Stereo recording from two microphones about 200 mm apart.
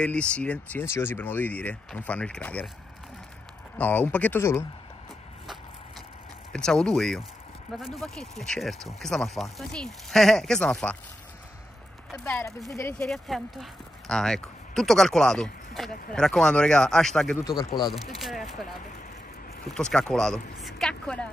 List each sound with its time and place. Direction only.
0.0 s speech: 5° left (ahead or behind)
3.7 s speech: 10° left (ahead or behind)
6.5 s speech: 5° left (ahead or behind)
12.1 s speech: 10° left (ahead or behind)
17.4 s speech: 20° left (ahead or behind)
18.1 s speech: centre (ahead or behind)
19.7 s speech: 5° left (ahead or behind)